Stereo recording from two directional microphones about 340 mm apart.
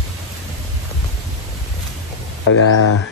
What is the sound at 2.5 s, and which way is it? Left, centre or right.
Speech, left.